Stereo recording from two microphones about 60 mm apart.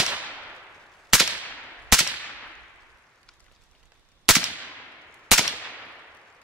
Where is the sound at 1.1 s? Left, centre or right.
Centre.